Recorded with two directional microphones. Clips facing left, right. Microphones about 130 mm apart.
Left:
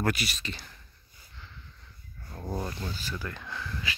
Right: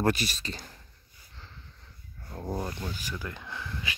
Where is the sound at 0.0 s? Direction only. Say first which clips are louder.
Right 3 dB; 35° right (ahead or behind).